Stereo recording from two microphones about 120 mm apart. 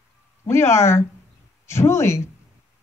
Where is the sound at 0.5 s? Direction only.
20° left (ahead or behind).